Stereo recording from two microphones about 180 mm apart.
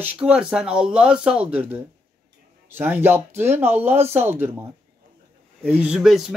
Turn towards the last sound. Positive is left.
turn(degrees=-5)  # may be behind; listen again after turning